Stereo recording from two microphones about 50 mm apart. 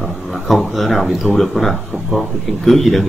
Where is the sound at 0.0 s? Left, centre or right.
Centre.